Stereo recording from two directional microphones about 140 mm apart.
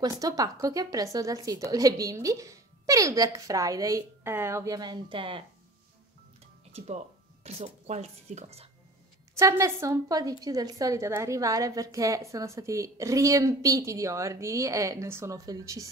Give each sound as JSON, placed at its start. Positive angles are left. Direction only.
{"t": 0.0, "sound": "a woman's voice", "side_deg": -25}
{"t": 7.4, "sound": "a woman's voice", "side_deg": -50}
{"t": 9.4, "sound": "a woman's voice", "side_deg": -20}